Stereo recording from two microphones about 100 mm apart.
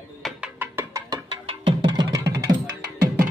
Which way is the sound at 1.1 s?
60° right (ahead or behind).